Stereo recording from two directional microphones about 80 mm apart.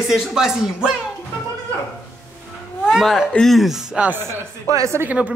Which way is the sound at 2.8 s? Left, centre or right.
Centre.